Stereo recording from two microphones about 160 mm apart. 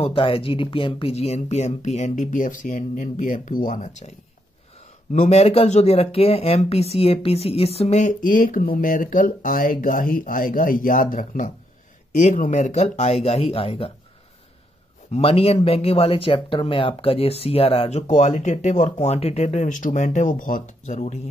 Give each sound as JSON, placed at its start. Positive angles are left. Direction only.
{"t": 0.0, "sound": "speech", "side_deg": 35}
{"t": 5.1, "sound": "speech", "side_deg": 45}
{"t": 15.1, "sound": "speech", "side_deg": 35}